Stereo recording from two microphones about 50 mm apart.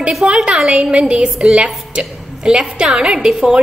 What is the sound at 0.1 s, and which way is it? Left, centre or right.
A woman's voice, centre.